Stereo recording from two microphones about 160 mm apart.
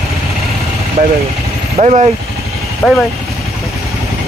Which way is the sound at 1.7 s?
45° right (ahead or behind).